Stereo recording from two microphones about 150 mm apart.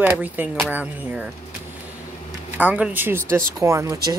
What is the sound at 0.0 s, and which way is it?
Speech, 10° right (ahead or behind).